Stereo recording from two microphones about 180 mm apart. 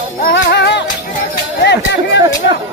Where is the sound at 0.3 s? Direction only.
70° left (ahead or behind).